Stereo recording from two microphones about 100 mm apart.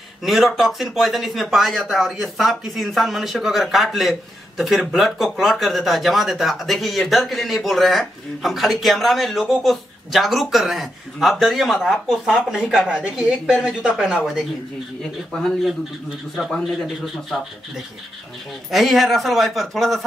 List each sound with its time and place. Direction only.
0.2 s speech: centre (ahead or behind)